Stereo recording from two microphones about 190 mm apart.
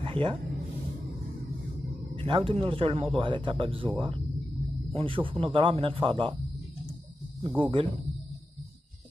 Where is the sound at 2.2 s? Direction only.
25° right (ahead or behind).